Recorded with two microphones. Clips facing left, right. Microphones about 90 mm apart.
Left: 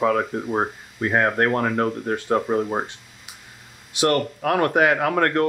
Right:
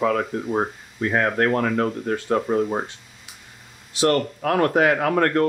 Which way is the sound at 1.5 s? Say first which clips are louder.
Even; 15° left (ahead or behind).